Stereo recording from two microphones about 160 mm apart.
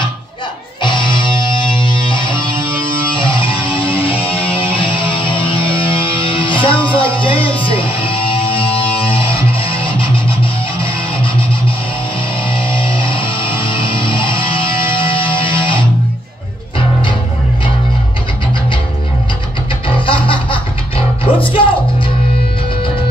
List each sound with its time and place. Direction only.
0.8 s music: 30° left (ahead or behind)
12.4 s music: 30° left (ahead or behind)
20.1 s music: 30° left (ahead or behind)